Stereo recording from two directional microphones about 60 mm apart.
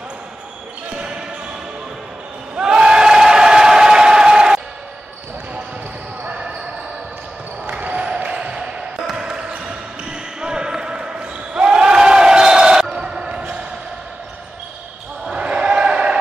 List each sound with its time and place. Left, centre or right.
0.9 s basketball bounce: centre
2.5 s crowd: centre
7.8 s basketball bounce: centre
15.3 s basketball bounce: centre